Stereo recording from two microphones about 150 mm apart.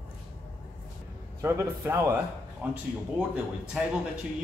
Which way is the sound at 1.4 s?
15° right (ahead or behind).